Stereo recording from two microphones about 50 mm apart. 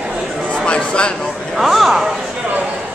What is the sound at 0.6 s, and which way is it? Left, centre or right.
Speech, left.